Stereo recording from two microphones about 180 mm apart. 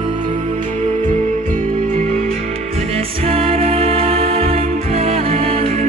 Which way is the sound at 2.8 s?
35° right (ahead or behind).